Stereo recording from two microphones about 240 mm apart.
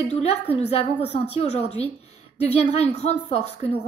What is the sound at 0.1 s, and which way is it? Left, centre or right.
A woman's voice, left.